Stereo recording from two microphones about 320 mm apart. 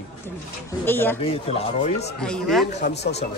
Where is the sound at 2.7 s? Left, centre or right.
Left.